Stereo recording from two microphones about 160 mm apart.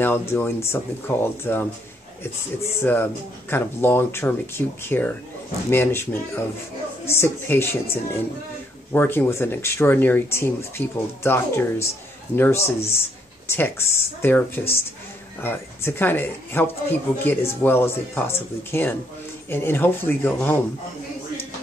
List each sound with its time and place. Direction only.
0.0 s speech: 15° left (ahead or behind)
8.9 s speech: 10° left (ahead or behind)